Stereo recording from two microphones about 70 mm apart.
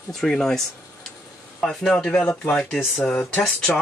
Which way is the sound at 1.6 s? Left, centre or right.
Centre.